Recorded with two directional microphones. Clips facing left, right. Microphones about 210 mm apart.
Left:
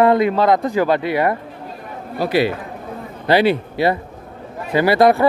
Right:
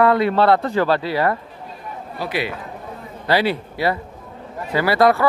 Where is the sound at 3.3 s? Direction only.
20° left (ahead or behind).